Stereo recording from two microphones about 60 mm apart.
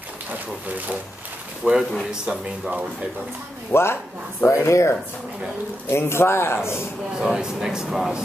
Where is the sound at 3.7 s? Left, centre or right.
Left.